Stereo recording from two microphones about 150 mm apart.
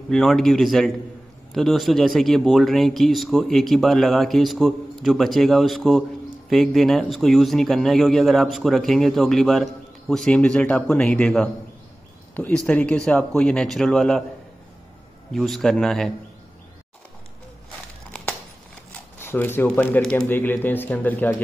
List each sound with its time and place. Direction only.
0.1 s a man's voice: centre (ahead or behind)
15.3 s a man's voice: centre (ahead or behind)
18.9 s speech: 15° left (ahead or behind)